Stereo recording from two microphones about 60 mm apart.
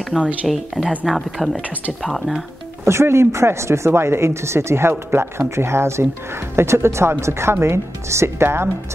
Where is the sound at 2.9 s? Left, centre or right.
Right.